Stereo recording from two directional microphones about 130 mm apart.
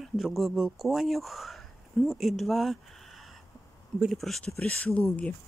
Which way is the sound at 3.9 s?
Centre (ahead or behind).